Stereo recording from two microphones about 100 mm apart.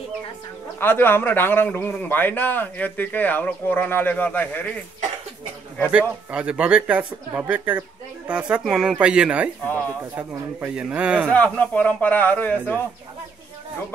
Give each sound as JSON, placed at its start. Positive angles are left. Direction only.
{"t": 0.7, "sound": "a man's voice", "side_deg": 20}
{"t": 5.9, "sound": "speech", "side_deg": -10}
{"t": 9.7, "sound": "speech", "side_deg": 20}
{"t": 10.8, "sound": "speech", "side_deg": -10}
{"t": 11.2, "sound": "speech", "side_deg": 15}